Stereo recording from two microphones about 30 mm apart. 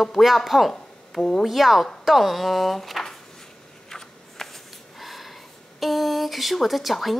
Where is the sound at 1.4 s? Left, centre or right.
Centre.